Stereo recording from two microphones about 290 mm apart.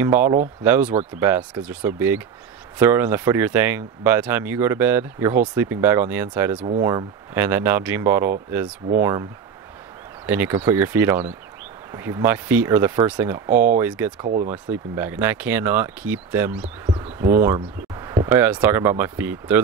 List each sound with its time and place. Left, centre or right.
0.0 s speech: centre
10.2 s speech: centre
14.2 s speech: right
14.5 s speech: centre